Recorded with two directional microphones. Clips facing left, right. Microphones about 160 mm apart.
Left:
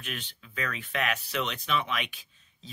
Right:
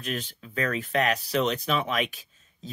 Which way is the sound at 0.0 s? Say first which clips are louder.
Right 7 dB; 40° right (ahead or behind).